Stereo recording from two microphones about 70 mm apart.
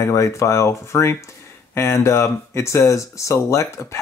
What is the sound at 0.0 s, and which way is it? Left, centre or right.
Speech, left.